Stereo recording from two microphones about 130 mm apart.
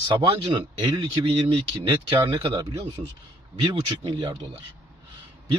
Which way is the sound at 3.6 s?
35° right (ahead or behind).